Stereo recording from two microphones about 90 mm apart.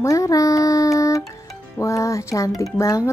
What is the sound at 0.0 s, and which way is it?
Music, 35° left (ahead or behind).